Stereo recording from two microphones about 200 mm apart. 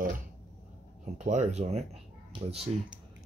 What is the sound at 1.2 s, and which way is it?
Speech, 35° right (ahead or behind).